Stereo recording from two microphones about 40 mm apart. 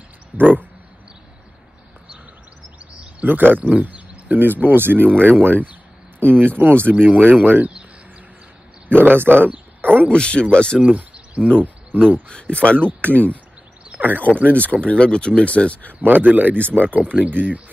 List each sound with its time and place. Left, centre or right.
0.3 s speech: right
2.9 s a sound: right
3.3 s speech: right
4.4 s speech: right
6.9 s speech: right
7.4 s speech: right
9.0 s speech: right
10.1 s speech: left
10.8 s a sound: right
11.6 s speech: right
12.3 s speech: left
13.9 s a sound: right
14.4 s speech: left
16.0 s speech: right